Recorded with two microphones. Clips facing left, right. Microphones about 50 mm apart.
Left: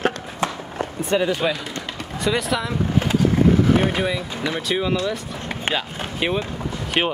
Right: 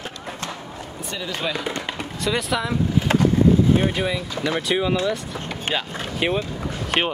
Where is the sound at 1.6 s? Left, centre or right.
Right.